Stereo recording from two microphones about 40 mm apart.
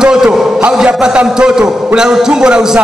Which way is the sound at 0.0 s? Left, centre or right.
Centre.